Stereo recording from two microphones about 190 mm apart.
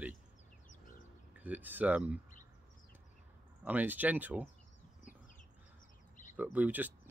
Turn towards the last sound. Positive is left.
turn(degrees=-10)  # may be behind; listen again after turning